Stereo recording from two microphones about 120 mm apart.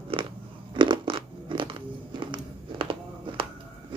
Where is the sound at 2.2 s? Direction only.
40° right (ahead or behind).